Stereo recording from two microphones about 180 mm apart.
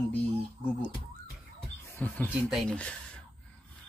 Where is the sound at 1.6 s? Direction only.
10° left (ahead or behind).